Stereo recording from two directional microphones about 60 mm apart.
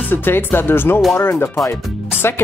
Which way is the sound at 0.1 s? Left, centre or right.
Left.